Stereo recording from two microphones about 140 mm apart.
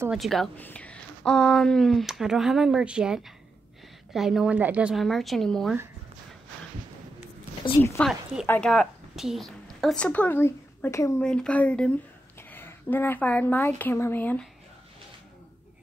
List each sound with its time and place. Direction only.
0.1 s speech: centre (ahead or behind)
0.6 s speech: 10° left (ahead or behind)
7.7 s speech: 35° left (ahead or behind)
8.0 s a woman's voice: centre (ahead or behind); by 11.2 s 20° left (ahead or behind)
11.2 s a woman's voice: 5° left (ahead or behind)